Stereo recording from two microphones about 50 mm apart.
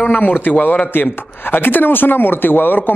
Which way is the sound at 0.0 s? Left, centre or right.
Left.